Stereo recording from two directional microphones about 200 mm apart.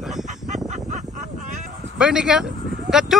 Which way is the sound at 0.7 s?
35° right (ahead or behind).